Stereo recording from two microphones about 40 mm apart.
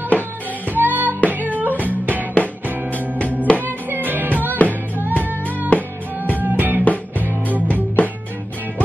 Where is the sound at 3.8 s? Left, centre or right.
Right.